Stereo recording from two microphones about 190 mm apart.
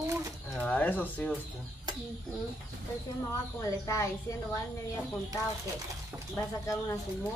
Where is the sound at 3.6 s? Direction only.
15° left (ahead or behind).